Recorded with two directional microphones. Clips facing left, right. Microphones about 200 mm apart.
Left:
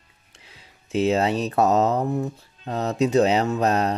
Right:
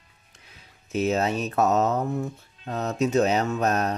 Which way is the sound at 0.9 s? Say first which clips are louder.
Left 3 dB; 30° left (ahead or behind).